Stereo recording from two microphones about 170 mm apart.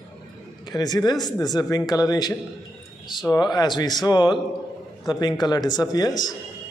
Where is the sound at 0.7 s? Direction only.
25° left (ahead or behind).